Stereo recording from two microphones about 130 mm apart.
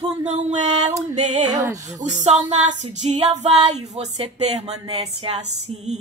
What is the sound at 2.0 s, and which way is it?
Female singing, 60° right (ahead or behind).